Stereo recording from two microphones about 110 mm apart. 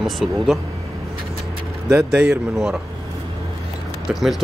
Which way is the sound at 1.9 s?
15° right (ahead or behind).